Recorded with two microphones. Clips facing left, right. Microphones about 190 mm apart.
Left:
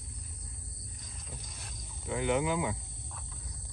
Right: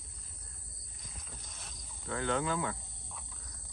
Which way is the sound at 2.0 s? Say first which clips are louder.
Left 3 dB; 15° left (ahead or behind).